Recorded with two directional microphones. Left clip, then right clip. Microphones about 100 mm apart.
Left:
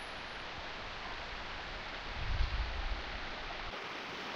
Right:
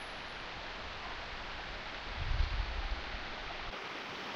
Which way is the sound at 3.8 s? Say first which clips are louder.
Even; 35° left (ahead or behind).